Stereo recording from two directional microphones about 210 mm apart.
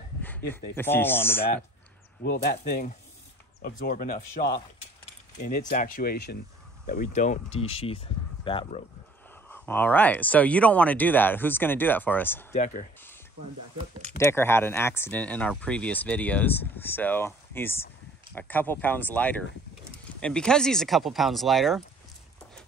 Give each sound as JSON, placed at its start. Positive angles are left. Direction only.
{"t": 0.5, "sound": "speech", "side_deg": 10}
{"t": 2.3, "sound": "speech", "side_deg": 50}
{"t": 6.9, "sound": "speech", "side_deg": 40}
{"t": 7.6, "sound": "speech", "side_deg": 25}
{"t": 9.5, "sound": "speech", "side_deg": 10}
{"t": 12.5, "sound": "speech", "side_deg": 35}
{"t": 14.1, "sound": "speech", "side_deg": 10}